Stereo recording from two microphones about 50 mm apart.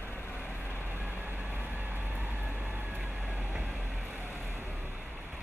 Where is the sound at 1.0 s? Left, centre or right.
Right.